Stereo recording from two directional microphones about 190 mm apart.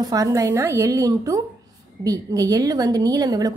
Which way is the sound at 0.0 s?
20° right (ahead or behind).